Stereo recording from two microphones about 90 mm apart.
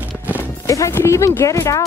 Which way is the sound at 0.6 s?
35° left (ahead or behind).